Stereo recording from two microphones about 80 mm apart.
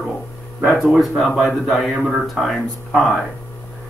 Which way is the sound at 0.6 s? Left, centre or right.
Centre.